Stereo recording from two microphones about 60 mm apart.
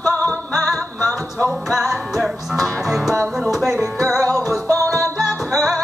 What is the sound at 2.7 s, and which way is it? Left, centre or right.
Music, right.